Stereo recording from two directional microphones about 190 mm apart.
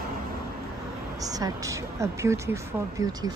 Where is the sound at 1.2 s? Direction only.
20° right (ahead or behind).